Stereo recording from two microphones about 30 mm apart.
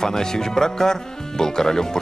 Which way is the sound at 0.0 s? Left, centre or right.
Centre.